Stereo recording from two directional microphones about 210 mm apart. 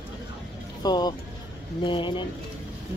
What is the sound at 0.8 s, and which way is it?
Speech, 20° left (ahead or behind).